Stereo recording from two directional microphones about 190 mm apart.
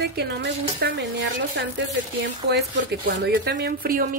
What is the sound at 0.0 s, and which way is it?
Speech, 60° right (ahead or behind).